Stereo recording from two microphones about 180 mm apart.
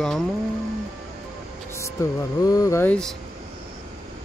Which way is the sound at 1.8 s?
20° left (ahead or behind).